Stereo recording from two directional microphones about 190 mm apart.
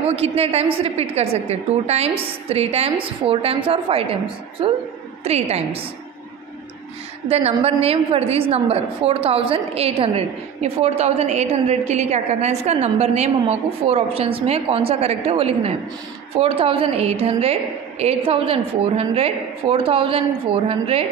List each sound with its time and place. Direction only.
0.0 s a woman's voice: 30° right (ahead or behind)
7.2 s a woman's voice: 35° right (ahead or behind)